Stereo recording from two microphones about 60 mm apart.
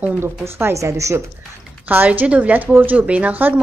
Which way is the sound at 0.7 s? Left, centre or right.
Right.